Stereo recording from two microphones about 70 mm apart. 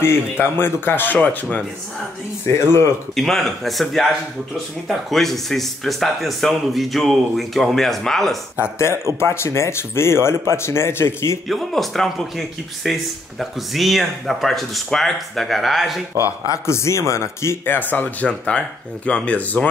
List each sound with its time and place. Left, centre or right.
0.0 s speech: left
2.4 s speech: left
3.2 s a man's voice: centre
9.2 s speech: left
11.4 s a man's voice: centre
16.3 s speech: left
17.7 s speech: left